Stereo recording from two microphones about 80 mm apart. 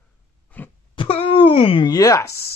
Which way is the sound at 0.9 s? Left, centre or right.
Left.